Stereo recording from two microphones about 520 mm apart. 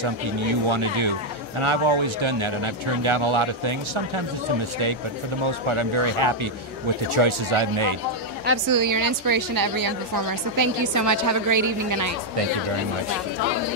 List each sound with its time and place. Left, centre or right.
0.0 s speech: right
5.4 s speech: right
8.6 s a woman's voice: right